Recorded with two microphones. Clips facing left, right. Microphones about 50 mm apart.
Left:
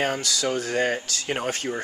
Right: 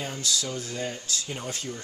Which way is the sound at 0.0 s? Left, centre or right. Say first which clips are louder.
Left 6 dB; left.